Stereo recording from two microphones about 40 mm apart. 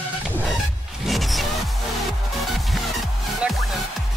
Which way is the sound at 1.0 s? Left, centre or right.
Centre.